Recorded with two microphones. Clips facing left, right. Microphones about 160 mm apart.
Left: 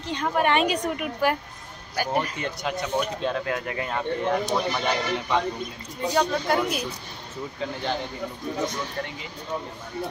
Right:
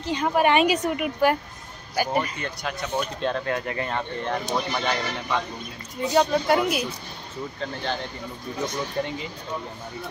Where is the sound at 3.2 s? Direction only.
5° left (ahead or behind).